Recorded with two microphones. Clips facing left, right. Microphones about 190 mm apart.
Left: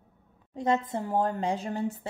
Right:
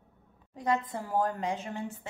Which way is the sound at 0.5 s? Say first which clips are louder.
Left 3 dB; 25° left (ahead or behind).